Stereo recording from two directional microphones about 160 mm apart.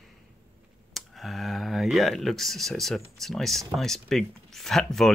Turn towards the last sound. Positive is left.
turn(degrees=0)  # may be behind; listen again after turning